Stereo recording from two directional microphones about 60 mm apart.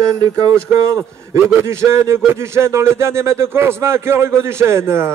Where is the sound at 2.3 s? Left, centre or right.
Right.